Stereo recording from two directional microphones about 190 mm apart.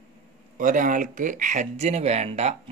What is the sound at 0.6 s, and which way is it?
Speech, 45° right (ahead or behind).